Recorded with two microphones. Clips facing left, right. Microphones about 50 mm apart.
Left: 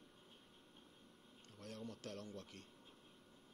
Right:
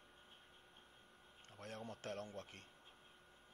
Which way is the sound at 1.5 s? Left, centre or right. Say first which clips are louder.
Right 1 dB; right.